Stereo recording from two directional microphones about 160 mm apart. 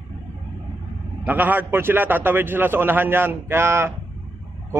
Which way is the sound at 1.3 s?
10° right (ahead or behind).